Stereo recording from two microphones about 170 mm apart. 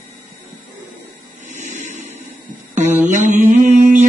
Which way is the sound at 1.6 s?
45° right (ahead or behind).